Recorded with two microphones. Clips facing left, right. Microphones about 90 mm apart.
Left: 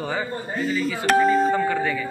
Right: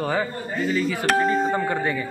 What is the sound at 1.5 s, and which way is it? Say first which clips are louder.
Speech: left 1 dB; 20° right (ahead or behind).